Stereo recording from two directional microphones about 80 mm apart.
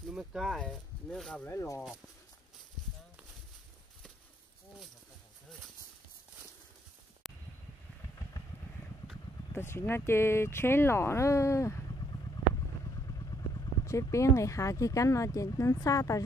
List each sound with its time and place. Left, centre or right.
0.1 s speech: centre
1.5 s speech: left
7.2 s a sound: centre
9.5 s speech: left
12.8 s vehicle: left
13.8 s speech: left